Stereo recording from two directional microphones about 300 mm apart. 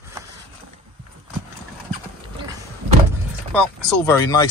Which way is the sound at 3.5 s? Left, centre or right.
Centre.